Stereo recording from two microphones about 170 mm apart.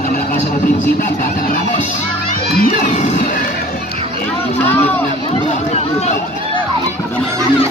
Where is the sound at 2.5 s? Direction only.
55° left (ahead or behind).